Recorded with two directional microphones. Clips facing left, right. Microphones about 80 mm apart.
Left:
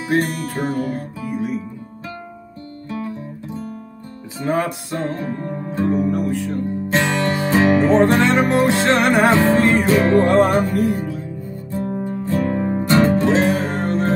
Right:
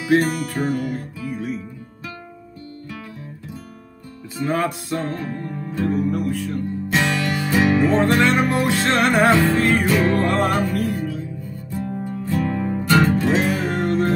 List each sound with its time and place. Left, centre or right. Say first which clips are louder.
0.5 s music: left 1 dB; left
4.4 s music: left 1 dB; left
9.9 s music: left 4 dB; left
10.2 s music: left 5 dB; left